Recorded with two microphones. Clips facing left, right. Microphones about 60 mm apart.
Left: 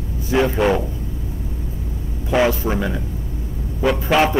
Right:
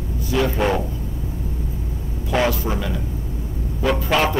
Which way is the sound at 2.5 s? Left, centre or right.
Left.